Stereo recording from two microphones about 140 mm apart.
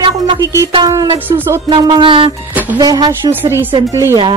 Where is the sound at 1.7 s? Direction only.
35° right (ahead or behind).